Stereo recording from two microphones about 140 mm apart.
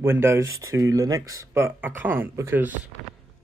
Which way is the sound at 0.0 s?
15° right (ahead or behind).